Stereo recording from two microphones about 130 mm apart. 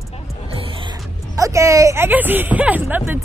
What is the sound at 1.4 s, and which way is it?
Speech, 25° right (ahead or behind).